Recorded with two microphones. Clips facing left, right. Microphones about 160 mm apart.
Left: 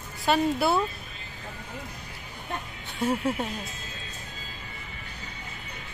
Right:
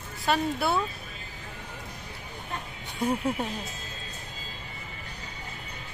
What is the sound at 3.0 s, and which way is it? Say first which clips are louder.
Speech: left 1 dB; 15° right (ahead or behind).